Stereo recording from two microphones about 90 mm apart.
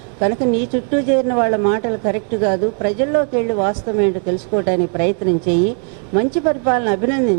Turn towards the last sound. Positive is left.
turn(degrees=-15)  # may be behind; listen again after turning